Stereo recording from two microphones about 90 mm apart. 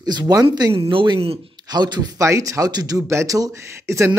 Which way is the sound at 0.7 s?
80° right.